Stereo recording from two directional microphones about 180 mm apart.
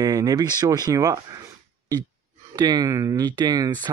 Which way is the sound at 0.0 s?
20° right (ahead or behind).